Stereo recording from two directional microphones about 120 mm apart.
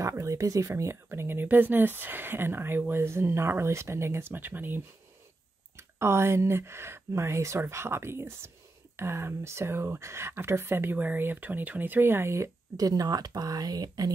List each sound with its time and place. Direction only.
0.0 s speech: 25° right (ahead or behind)